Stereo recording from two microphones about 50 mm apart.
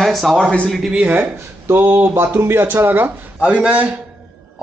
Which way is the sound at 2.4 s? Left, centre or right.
Right.